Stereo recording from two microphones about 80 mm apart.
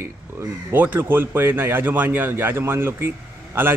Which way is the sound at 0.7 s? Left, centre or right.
Right.